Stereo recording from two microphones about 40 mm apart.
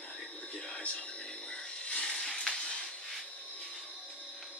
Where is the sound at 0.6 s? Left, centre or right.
Left.